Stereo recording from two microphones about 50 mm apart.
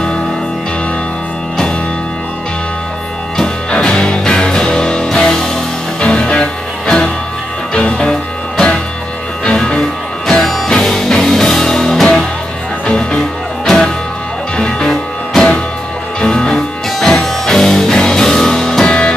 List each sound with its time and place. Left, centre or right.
3.7 s music: centre
9.4 s music: centre
10.4 s music: centre; by 19.1 s left